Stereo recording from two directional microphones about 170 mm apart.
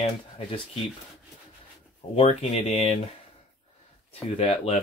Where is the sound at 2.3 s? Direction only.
40° left (ahead or behind).